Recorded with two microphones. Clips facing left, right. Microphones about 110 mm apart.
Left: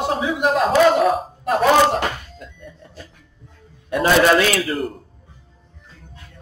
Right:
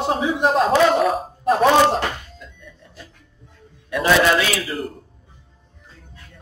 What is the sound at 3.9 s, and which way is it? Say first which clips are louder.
Speech: left 2 dB; 45° left (ahead or behind).